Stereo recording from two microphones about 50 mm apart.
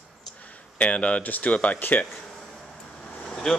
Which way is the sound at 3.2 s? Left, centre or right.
Centre.